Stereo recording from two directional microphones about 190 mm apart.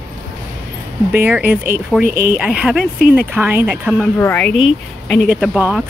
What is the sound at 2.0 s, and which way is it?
Speech, 50° right (ahead or behind).